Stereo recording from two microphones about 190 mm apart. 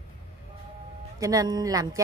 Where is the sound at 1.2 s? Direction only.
20° right (ahead or behind).